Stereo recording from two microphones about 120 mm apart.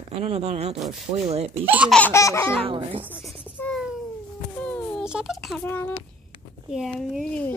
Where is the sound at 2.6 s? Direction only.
50° right (ahead or behind).